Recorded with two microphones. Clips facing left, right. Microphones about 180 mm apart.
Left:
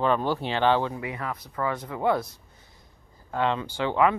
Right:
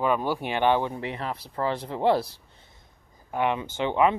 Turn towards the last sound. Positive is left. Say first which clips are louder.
# even
turn(degrees=-20)  # may be behind; listen again after turning